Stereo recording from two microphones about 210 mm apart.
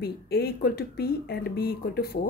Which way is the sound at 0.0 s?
50° left (ahead or behind).